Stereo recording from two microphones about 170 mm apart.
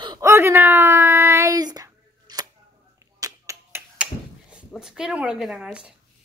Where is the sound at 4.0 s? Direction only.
5° right (ahead or behind).